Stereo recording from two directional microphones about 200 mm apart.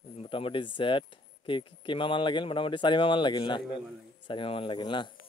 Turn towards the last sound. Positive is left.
turn(degrees=25)  # may be behind; listen again after turning